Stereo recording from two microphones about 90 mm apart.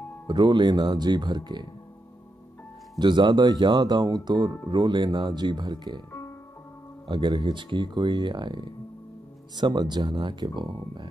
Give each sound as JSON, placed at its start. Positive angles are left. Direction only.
{"t": 0.3, "sound": "speech", "side_deg": -55}
{"t": 3.0, "sound": "speech", "side_deg": -60}
{"t": 7.1, "sound": "speech", "side_deg": -60}